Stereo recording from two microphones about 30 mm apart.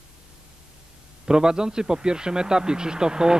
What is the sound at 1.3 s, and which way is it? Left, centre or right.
A man's voice, right.